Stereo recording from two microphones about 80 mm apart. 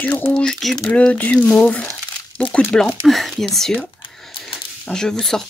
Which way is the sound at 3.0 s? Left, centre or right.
Centre.